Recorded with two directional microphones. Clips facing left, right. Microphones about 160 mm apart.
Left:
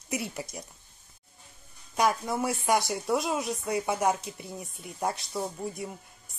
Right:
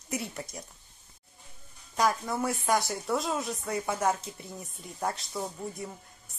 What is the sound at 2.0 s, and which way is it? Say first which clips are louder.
A woman's voice: left 1 dB; 15° left (ahead or behind).